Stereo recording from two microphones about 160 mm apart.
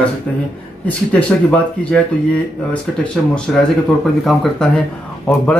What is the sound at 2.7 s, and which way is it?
Speech, 5° left (ahead or behind).